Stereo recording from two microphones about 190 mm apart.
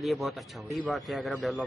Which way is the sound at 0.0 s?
Centre (ahead or behind).